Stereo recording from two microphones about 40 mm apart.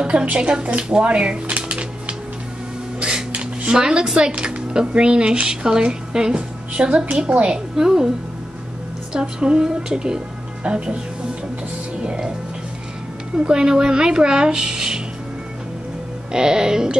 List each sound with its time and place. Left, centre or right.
0.2 s speech: right
1.7 s music: right
3.3 s speech: centre
4.4 s speech: right
7.7 s a woman's voice: centre
9.1 s a woman's voice: right
12.0 s speech: right
13.4 s speech: centre
16.3 s speech: centre